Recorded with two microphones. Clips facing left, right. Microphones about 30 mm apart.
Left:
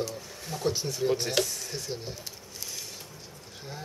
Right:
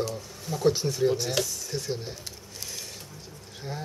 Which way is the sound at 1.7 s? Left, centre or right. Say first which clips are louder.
Right 6 dB; centre.